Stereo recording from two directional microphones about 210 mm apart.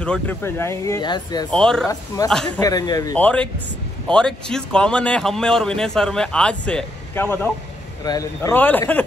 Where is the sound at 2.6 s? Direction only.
15° left (ahead or behind).